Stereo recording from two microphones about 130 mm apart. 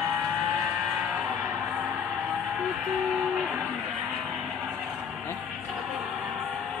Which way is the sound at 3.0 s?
Centre (ahead or behind).